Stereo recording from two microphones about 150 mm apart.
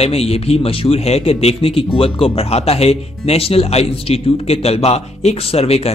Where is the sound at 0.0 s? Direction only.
45° left (ahead or behind).